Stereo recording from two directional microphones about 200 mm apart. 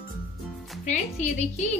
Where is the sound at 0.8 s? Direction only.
35° left (ahead or behind).